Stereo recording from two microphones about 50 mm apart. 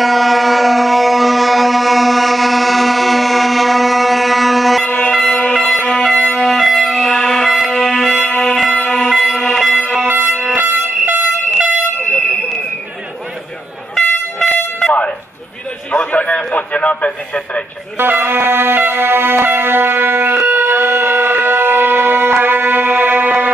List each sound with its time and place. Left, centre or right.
0.0 s vehicle: centre
4.8 s vehicle horn: left
5.5 s vehicle horn: centre
5.9 s music: centre
6.3 s music: centre
8.3 s music: centre
8.5 s a sound: centre
9.2 s vehicle horn: centre
10.0 s fire alarm: right
10.4 s air horn: right
15.9 s a sound: left
16.7 s radio: left
17.9 s music: right